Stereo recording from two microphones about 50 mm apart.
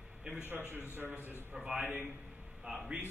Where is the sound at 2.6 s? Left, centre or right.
Centre.